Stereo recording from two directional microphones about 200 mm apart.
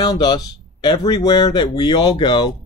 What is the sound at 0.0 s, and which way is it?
Speech, 20° left (ahead or behind).